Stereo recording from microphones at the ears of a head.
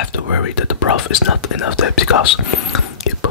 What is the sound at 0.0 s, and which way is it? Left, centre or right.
Speech, left.